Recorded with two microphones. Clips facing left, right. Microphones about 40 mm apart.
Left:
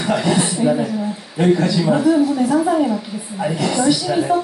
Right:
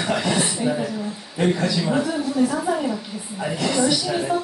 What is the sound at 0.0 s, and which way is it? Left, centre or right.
A man's voice, centre.